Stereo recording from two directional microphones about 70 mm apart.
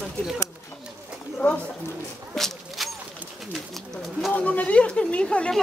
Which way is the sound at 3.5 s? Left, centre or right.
Centre.